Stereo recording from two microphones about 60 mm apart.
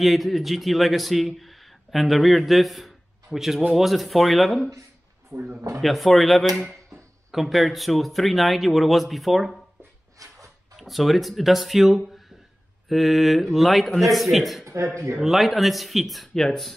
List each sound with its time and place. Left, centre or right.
0.0 s speech: centre
5.3 s speech: right
5.8 s speech: centre
10.1 s a sound: right
10.8 s speech: centre